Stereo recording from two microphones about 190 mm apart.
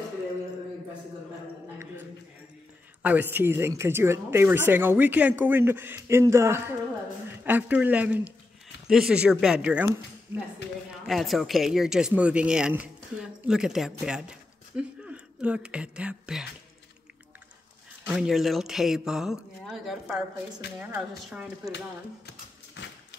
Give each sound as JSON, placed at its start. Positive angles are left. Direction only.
{"t": 3.0, "sound": "a woman's voice", "side_deg": -10}
{"t": 11.1, "sound": "speech", "side_deg": 0}
{"t": 18.0, "sound": "a woman's voice", "side_deg": 0}
{"t": 22.8, "sound": "a sound", "side_deg": 70}